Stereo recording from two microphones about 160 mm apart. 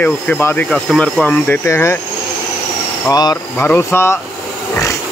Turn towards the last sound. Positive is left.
turn(degrees=15)  # may be behind; listen again after turning